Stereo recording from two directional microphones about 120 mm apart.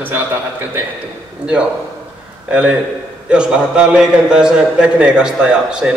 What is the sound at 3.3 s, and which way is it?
A man's voice, 10° right (ahead or behind).